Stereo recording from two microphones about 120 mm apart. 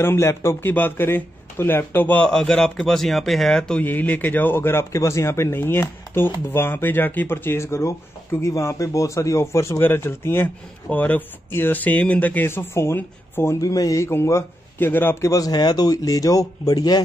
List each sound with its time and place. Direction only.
0.0 s a man's voice: 20° left (ahead or behind)